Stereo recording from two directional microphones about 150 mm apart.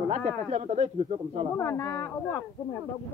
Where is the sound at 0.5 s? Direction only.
50° right (ahead or behind).